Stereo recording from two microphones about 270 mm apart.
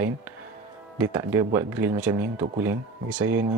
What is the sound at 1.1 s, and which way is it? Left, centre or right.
Speech, centre.